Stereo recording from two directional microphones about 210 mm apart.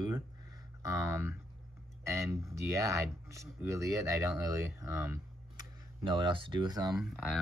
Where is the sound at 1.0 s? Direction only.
15° right (ahead or behind).